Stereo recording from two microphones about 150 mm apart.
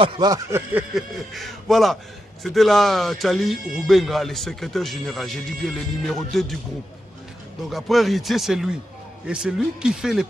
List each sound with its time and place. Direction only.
0.0 s a sound: 25° right (ahead or behind)
0.9 s speech: centre (ahead or behind)
7.7 s speech: centre (ahead or behind)